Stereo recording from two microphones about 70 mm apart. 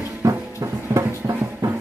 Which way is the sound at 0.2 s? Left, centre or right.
Right.